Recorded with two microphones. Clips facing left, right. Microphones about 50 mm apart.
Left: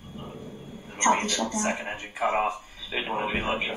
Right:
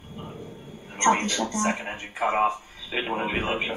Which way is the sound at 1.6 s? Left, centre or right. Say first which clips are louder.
Right 2 dB; centre.